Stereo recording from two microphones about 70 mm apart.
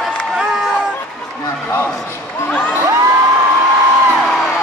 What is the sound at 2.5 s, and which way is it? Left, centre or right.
Crowd, centre.